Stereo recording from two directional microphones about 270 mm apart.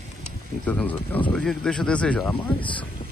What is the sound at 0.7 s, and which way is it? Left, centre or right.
Speech, centre.